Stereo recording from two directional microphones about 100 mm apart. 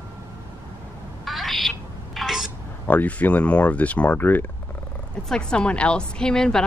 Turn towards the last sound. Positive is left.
turn(degrees=5)  # may be behind; listen again after turning